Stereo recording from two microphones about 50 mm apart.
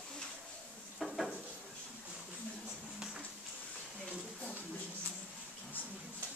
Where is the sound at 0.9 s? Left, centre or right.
Centre.